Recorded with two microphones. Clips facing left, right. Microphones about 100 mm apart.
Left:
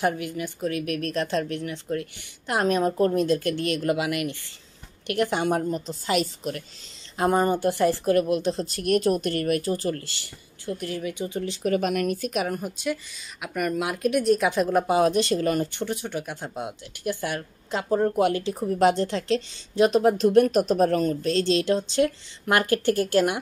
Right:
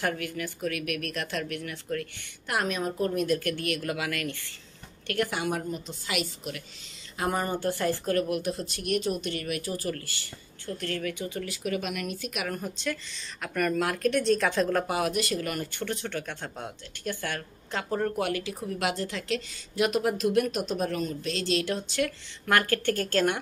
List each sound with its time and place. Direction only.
0.0 s speech: 20° left (ahead or behind)
2.6 s speech: 40° left (ahead or behind)
3.3 s speech: 25° left (ahead or behind)
5.4 s speech: 35° left (ahead or behind)
10.6 s speech: 15° left (ahead or behind)
11.6 s a woman's voice: 45° left (ahead or behind)
12.5 s speech: 15° left (ahead or behind)
15.0 s speech: 30° left (ahead or behind)